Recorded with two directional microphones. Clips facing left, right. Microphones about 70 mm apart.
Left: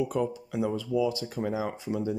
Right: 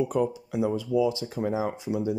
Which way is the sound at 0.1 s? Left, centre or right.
Centre.